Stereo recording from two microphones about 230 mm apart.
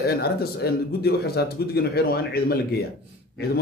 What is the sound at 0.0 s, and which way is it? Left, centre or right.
Speech, left.